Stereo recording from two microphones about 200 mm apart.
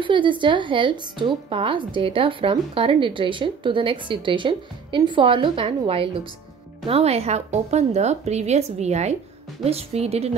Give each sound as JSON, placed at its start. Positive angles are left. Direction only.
{"t": 0.0, "sound": "a woman's voice", "side_deg": -25}